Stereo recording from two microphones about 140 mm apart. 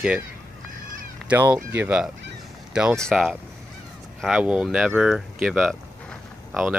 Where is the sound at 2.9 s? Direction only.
5° left (ahead or behind).